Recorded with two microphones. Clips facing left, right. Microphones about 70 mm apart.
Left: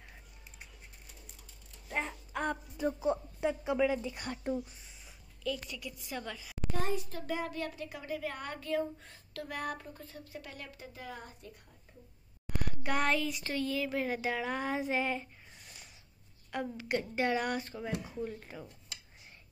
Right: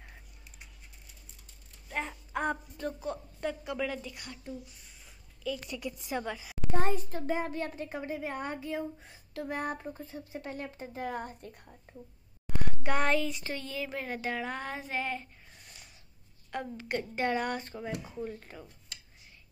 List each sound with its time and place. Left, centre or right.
1.9 s mechanisms: centre
2.8 s a woman's voice: centre
4.1 s a woman's voice: left
5.7 s speech: right
6.7 s a woman's voice: right; by 9.4 s centre
9.4 s speech: right
12.6 s speech: centre